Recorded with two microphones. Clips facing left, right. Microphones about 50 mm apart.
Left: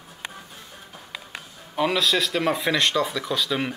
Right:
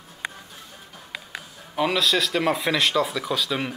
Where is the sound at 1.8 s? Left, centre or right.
Centre.